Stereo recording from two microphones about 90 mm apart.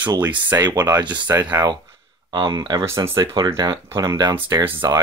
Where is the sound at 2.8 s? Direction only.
30° right (ahead or behind).